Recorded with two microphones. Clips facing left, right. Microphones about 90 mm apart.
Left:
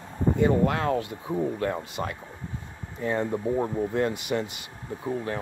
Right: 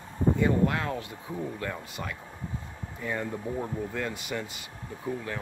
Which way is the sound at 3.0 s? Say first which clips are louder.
Left 6 dB; 30° left (ahead or behind).